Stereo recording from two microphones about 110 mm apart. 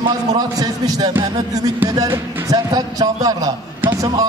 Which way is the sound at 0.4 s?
35° right (ahead or behind).